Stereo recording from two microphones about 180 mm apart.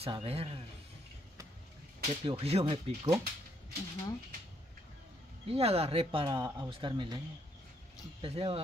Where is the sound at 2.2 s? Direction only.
35° right (ahead or behind).